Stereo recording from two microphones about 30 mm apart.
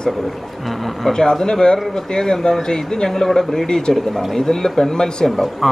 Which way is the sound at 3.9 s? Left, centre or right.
Centre.